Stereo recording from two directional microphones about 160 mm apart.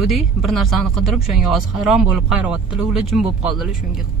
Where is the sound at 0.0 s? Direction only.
Centre (ahead or behind).